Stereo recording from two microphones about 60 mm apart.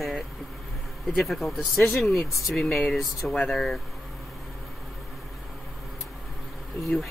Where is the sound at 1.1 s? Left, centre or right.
Centre.